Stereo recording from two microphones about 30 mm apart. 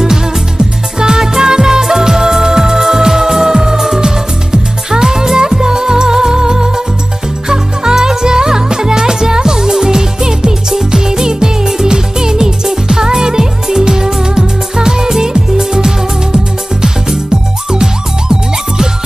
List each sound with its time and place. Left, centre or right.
0.9 s music: right